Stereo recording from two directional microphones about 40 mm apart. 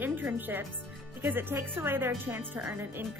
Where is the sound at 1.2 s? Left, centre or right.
Right.